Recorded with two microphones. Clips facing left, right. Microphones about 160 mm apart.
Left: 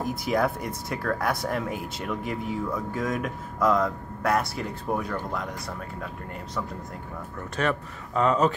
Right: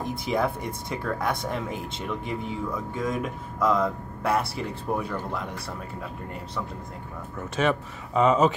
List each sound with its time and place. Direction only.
0.2 s speech: centre (ahead or behind)
7.6 s speech: 20° right (ahead or behind)